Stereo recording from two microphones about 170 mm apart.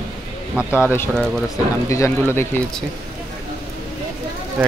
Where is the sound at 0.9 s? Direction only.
10° left (ahead or behind).